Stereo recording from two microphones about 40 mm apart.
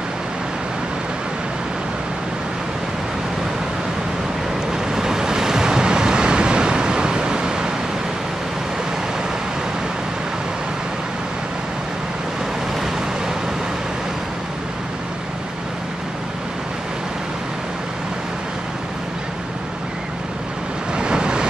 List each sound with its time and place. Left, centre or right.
4.9 s waves: centre
20.9 s vehicle: right